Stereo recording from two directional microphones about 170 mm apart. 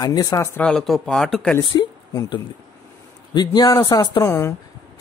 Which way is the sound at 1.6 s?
25° left (ahead or behind).